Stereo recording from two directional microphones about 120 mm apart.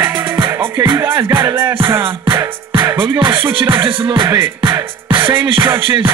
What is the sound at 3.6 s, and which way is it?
Music, 20° right (ahead or behind).